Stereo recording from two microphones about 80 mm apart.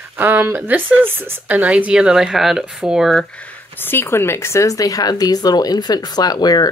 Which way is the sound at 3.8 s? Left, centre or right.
Left.